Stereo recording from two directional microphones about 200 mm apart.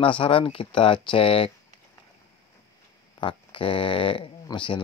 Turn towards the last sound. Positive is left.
turn(degrees=25)  # may be behind; listen again after turning